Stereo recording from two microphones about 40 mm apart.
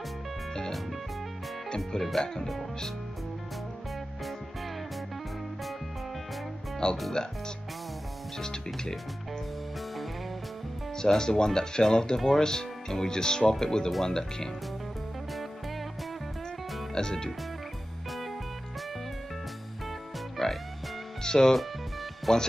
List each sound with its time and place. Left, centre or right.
2.0 s speech: centre
6.8 s speech: centre
11.0 s speech: centre
16.9 s speech: centre
20.4 s music: centre
22.3 s speech: centre